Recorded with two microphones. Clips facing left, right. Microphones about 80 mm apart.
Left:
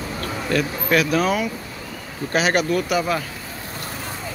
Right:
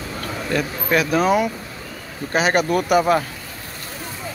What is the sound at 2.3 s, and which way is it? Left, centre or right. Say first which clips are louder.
Speech: right 1 dB; right.